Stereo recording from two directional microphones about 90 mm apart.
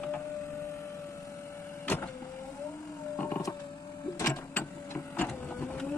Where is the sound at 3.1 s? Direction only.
20° left (ahead or behind).